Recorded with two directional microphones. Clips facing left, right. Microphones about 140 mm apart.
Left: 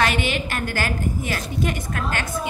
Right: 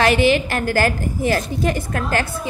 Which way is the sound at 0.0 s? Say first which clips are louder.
Right 7 dB; 35° right (ahead or behind).